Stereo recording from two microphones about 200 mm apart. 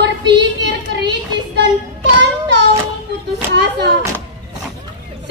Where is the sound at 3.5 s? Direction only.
60° right (ahead or behind).